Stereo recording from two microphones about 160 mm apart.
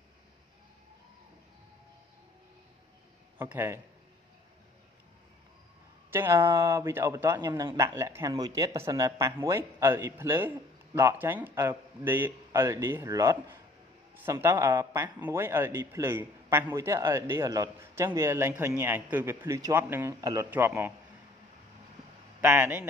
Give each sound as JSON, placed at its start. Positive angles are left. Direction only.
{"t": 3.3, "sound": "speech", "side_deg": -15}
{"t": 6.0, "sound": "speech", "side_deg": -15}
{"t": 22.4, "sound": "speech", "side_deg": -10}